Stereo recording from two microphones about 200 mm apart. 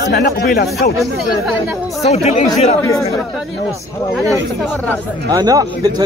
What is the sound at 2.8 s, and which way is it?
Speech, 10° left (ahead or behind).